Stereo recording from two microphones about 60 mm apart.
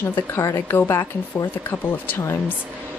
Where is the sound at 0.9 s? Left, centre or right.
Left.